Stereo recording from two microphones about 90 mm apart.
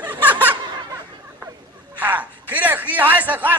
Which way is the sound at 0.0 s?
20° right (ahead or behind).